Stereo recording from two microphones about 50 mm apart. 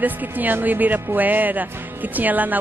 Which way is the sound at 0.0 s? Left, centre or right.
Right.